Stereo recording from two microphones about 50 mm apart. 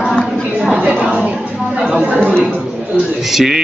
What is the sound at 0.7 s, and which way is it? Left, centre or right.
Speech, right.